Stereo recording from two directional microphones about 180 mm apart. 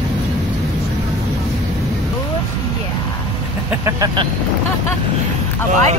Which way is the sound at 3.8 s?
25° right (ahead or behind).